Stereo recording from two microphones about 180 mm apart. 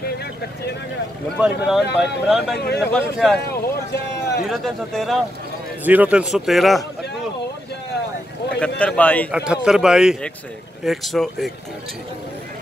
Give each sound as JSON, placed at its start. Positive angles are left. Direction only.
{"t": 0.0, "sound": "vehicle", "side_deg": 60}
{"t": 1.4, "sound": "a man's voice", "side_deg": -5}
{"t": 2.6, "sound": "speech", "side_deg": 65}
{"t": 2.9, "sound": "a man's voice", "side_deg": 0}
{"t": 3.4, "sound": "speech", "side_deg": 60}
{"t": 4.5, "sound": "a man's voice", "side_deg": 0}
{"t": 5.9, "sound": "a man's voice", "side_deg": -10}
{"t": 8.5, "sound": "speech", "side_deg": 5}
{"t": 9.3, "sound": "a man's voice", "side_deg": -5}